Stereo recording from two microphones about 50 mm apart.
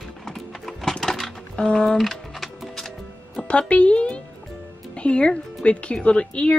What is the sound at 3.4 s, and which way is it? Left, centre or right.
Music, left.